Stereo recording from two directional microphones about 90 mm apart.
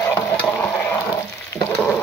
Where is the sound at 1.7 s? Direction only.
10° left (ahead or behind).